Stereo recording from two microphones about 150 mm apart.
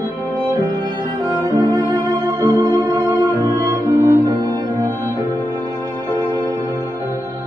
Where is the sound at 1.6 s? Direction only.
25° right (ahead or behind).